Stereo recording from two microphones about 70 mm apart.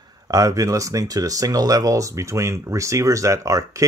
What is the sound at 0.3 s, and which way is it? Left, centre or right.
Speech, right.